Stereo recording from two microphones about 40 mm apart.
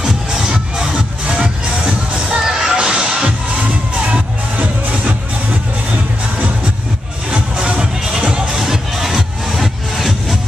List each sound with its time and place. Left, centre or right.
0.0 s music: centre
4.6 s music: right
7.2 s music: right
8.0 s music: centre